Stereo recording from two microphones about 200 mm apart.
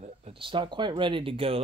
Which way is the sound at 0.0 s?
30° right (ahead or behind).